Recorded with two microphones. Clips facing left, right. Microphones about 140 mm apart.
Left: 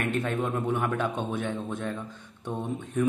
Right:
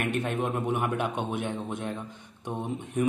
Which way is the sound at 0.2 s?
20° right (ahead or behind).